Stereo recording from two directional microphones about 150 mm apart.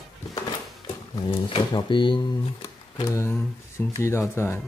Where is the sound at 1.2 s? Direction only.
35° left (ahead or behind).